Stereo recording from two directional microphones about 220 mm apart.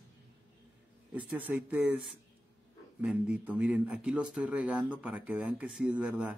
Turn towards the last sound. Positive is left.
turn(degrees=-5)  # may be behind; listen again after turning